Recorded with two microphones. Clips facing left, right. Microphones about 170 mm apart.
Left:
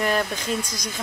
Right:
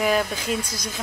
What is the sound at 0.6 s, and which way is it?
Speech, 30° right (ahead or behind).